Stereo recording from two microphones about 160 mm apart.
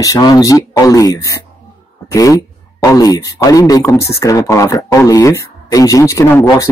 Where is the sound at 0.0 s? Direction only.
20° left (ahead or behind).